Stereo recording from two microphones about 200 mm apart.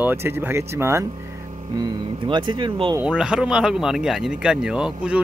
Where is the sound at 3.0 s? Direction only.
5° right (ahead or behind).